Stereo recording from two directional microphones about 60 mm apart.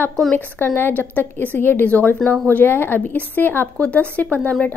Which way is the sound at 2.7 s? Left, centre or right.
Left.